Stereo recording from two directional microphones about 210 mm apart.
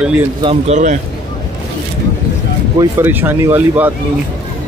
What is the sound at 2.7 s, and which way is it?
Speech, 10° right (ahead or behind).